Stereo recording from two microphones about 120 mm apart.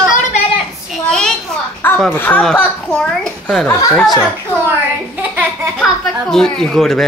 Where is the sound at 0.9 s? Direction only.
5° left (ahead or behind).